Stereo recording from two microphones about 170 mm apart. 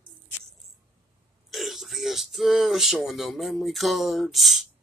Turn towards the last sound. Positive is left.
turn(degrees=0)  # may be behind; listen again after turning